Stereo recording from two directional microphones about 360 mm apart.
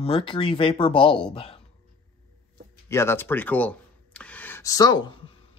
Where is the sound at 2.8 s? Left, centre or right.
Centre.